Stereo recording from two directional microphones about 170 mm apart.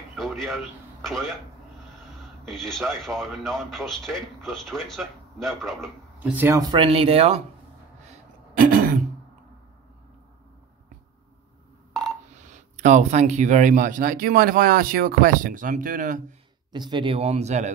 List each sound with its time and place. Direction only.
0.1 s a sound: centre (ahead or behind)
1.0 s a man's voice: centre (ahead or behind)
2.4 s a man's voice: centre (ahead or behind)
6.1 s speech: 10° right (ahead or behind); by 7.4 s 35° right (ahead or behind)
8.5 s throat clearing: 55° right (ahead or behind)
12.7 s speech: 45° right (ahead or behind)
16.7 s speech: 25° right (ahead or behind); by 17.7 s 40° right (ahead or behind)